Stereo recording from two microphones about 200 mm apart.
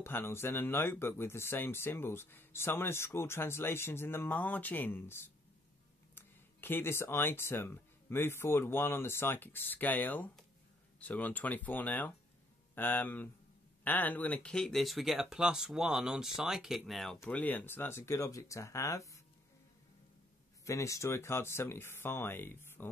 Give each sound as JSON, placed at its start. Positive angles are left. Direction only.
{"t": 0.0, "sound": "speech", "side_deg": 10}
{"t": 20.6, "sound": "speech", "side_deg": 15}